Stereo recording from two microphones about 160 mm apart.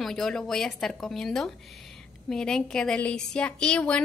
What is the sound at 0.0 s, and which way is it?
A woman's voice, 5° left (ahead or behind).